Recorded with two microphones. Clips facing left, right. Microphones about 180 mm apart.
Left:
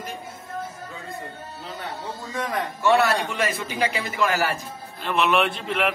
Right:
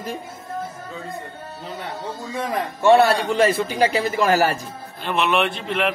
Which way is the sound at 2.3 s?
25° right (ahead or behind).